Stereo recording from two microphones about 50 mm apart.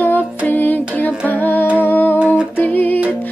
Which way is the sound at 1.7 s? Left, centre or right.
Left.